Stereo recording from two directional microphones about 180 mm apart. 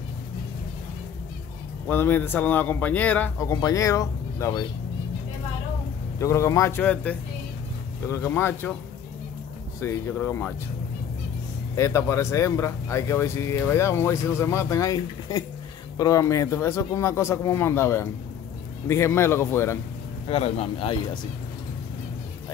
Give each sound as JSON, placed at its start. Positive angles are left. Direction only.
{"t": 1.9, "sound": "speech", "side_deg": 10}
{"t": 3.4, "sound": "speech", "side_deg": 20}
{"t": 6.1, "sound": "speech", "side_deg": 15}
{"t": 9.8, "sound": "speech", "side_deg": 10}
{"t": 11.7, "sound": "speech", "side_deg": 15}
{"t": 20.2, "sound": "speech", "side_deg": 35}